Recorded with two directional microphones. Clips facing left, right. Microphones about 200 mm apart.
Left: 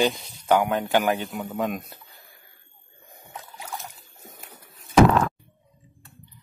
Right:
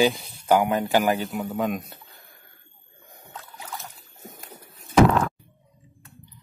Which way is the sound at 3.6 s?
15° left (ahead or behind).